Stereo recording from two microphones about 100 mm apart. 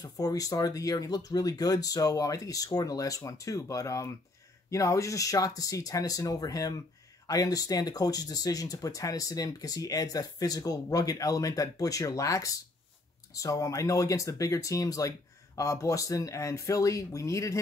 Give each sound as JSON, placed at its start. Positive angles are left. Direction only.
{"t": 0.0, "sound": "speech", "side_deg": 40}